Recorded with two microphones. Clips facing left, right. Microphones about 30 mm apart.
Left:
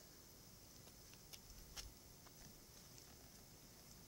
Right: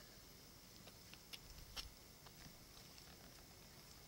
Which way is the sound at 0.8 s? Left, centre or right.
Right.